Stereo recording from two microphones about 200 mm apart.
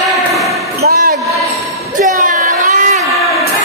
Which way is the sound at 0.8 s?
50° right (ahead or behind).